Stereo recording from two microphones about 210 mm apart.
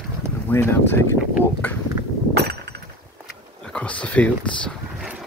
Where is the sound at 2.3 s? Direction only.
50° right (ahead or behind).